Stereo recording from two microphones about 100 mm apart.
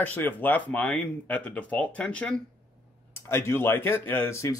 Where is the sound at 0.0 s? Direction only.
15° left (ahead or behind).